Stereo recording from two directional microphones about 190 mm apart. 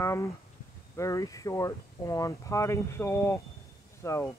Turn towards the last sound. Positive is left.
turn(degrees=15)  # may be behind; listen again after turning